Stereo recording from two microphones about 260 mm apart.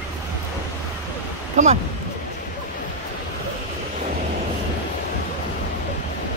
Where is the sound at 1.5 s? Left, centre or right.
Right.